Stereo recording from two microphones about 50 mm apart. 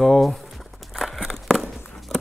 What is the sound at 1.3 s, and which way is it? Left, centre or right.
Walk, centre.